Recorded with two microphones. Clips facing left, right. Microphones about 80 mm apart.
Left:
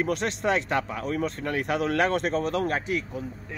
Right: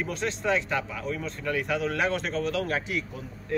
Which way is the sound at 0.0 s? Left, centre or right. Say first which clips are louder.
Left 3 dB; left.